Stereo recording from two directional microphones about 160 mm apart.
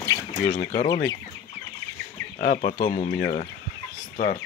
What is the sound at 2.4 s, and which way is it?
Speech, 50° left (ahead or behind).